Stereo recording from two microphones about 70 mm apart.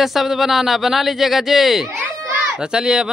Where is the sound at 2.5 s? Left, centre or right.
Centre.